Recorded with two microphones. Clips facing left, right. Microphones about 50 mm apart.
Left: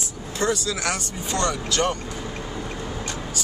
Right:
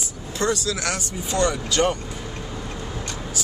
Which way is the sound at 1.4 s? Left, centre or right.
Centre.